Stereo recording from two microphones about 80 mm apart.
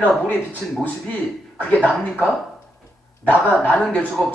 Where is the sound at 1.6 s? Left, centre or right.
Centre.